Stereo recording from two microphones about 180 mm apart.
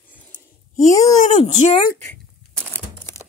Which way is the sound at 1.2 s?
40° left (ahead or behind).